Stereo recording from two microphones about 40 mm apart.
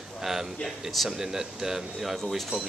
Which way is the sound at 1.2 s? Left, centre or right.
Centre.